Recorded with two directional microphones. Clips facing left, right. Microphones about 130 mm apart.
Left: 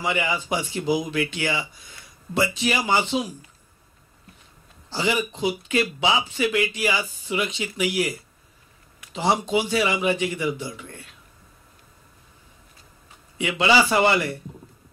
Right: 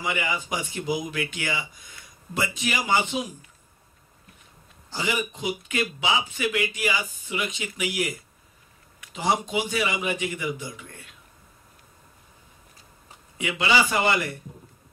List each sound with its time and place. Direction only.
0.0 s speech: 30° left (ahead or behind)
4.8 s speech: 30° left (ahead or behind)
13.4 s a man's voice: 30° left (ahead or behind)